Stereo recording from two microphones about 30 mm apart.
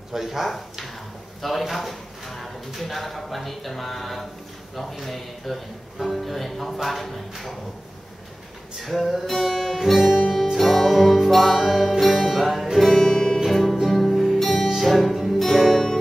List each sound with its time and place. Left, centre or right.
0.1 s speech: centre
8.8 s speech: centre
9.3 s guitar: centre
9.6 s speech: centre
10.3 s music: centre
12.9 s music: centre
13.5 s music: centre